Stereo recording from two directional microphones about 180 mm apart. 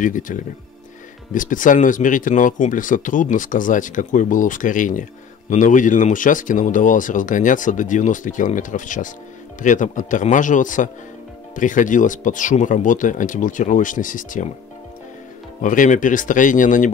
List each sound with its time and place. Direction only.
0.0 s speech: 45° left (ahead or behind)
15.6 s speech: 45° left (ahead or behind)